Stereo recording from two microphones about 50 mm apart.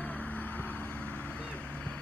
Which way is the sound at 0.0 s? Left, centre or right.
Left.